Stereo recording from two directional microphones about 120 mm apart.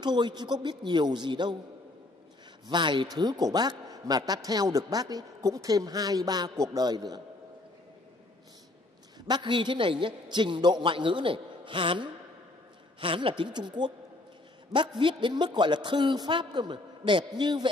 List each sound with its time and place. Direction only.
0.0 s speech: 35° right (ahead or behind)
2.7 s speech: 40° right (ahead or behind)
9.3 s a man's voice: 40° right (ahead or behind)